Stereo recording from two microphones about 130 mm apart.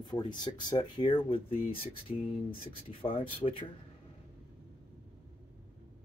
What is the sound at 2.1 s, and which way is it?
Speech, 60° left (ahead or behind).